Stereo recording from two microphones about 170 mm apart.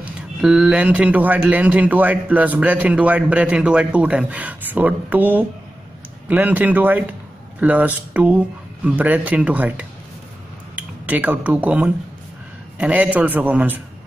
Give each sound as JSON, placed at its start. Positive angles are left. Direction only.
{"t": 0.4, "sound": "a man's voice", "side_deg": -5}